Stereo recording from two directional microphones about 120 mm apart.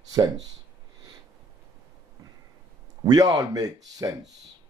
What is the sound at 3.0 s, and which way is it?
Speech, 30° right (ahead or behind).